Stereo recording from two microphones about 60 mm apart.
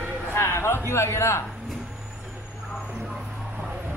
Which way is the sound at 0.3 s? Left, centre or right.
Left.